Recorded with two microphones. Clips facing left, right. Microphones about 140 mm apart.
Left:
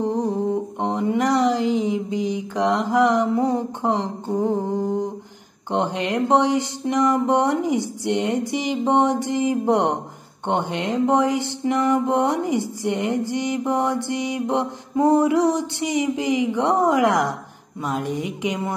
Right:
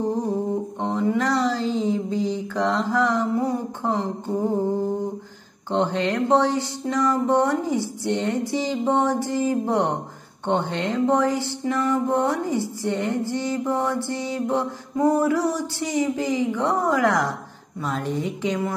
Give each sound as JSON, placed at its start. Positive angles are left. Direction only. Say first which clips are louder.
{"t": 0.0, "sound": "humming", "louder": "left 2 dB", "side_deg": 15}
{"t": 0.7, "sound": "mantra", "louder": "right 1 dB", "side_deg": 20}